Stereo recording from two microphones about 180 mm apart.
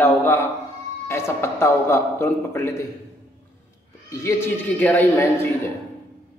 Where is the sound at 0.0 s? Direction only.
10° left (ahead or behind).